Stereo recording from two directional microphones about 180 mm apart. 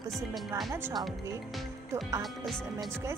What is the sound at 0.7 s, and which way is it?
Speech, 15° right (ahead or behind).